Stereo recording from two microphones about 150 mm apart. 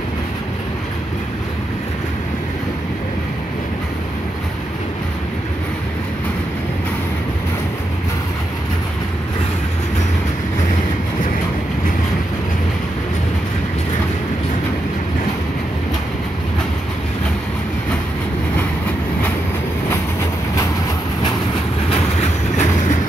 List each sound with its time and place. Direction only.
22.2 s train: 50° left (ahead or behind)